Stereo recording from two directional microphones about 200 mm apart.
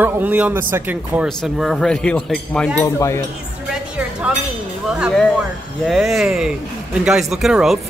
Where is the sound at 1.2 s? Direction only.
Centre (ahead or behind).